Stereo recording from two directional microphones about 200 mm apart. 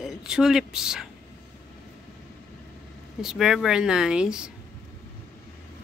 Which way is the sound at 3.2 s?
Centre (ahead or behind).